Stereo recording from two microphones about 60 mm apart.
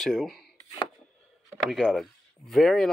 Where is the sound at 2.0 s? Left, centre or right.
Centre.